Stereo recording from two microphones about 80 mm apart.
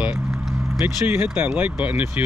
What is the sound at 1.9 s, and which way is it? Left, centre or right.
Speech, right.